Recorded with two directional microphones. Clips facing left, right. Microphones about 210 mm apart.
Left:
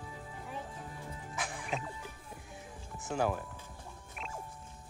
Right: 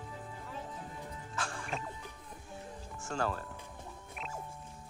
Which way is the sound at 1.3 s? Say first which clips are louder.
Left 1 dB; 15° left (ahead or behind).